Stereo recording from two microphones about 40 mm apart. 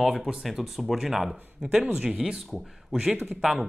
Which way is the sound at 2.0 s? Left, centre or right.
Right.